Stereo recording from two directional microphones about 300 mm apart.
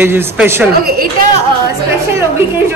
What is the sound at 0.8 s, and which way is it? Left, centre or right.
Speech, right.